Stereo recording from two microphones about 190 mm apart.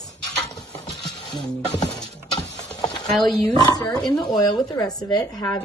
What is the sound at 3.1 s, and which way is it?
Speech, centre (ahead or behind).